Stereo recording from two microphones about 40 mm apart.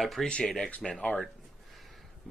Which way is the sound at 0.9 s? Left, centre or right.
Left.